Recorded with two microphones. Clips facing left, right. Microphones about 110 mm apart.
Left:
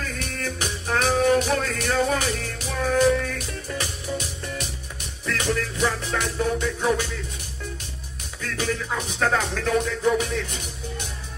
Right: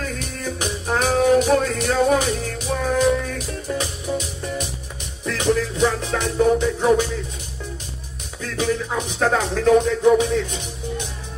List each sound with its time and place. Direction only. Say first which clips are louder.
0.4 s music: right 4 dB; 10° right (ahead or behind)
8.5 s music: right 5 dB; 10° right (ahead or behind)